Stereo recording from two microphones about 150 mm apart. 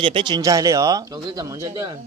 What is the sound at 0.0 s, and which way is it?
Speech, 35° right (ahead or behind).